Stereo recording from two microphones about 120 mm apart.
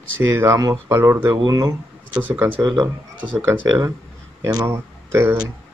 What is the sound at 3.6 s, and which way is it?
Speech, 30° right (ahead or behind).